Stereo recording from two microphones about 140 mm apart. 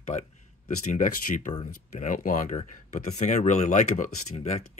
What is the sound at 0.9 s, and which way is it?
Speech, 70° left (ahead or behind).